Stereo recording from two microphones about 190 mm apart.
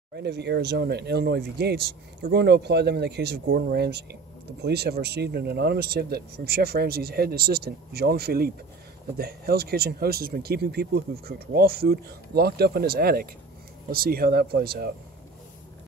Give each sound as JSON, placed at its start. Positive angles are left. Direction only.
{"t": 0.1, "sound": "speech", "side_deg": -60}